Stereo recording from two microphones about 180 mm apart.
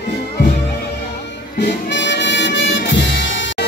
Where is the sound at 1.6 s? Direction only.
75° left (ahead or behind).